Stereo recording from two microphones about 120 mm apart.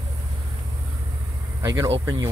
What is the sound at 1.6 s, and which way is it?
Speech, 30° right (ahead or behind).